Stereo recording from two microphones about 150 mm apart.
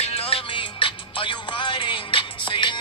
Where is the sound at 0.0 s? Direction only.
40° left (ahead or behind).